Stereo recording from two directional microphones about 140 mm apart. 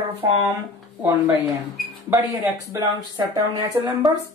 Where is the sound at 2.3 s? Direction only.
30° right (ahead or behind).